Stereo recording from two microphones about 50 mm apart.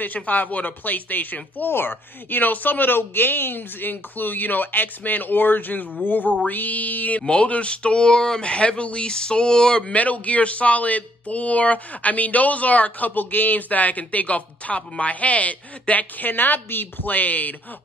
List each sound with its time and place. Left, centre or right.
0.0 s speech: left
7.2 s speech: left
9.9 s speech: left